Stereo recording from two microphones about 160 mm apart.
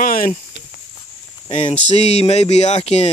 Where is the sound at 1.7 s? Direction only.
45° left (ahead or behind).